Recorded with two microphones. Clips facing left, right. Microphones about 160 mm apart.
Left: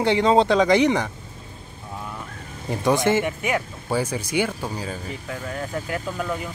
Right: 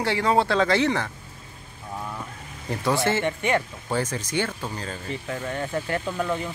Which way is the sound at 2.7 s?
15° left (ahead or behind).